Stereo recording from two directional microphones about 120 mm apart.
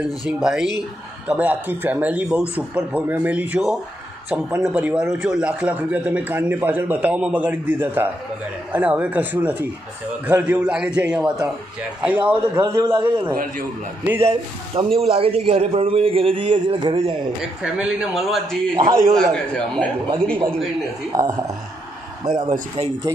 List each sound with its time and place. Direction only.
0.2 s a man's voice: 5° right (ahead or behind)
12.5 s speech: 40° right (ahead or behind)
14.0 s a man's voice: 20° right (ahead or behind)
14.8 s a man's voice: 50° right (ahead or behind)
17.4 s speech: 5° right (ahead or behind)
18.9 s a man's voice: 25° right (ahead or behind)
19.1 s speech: centre (ahead or behind)
21.1 s a man's voice: 30° right (ahead or behind)
22.2 s speech: 40° right (ahead or behind)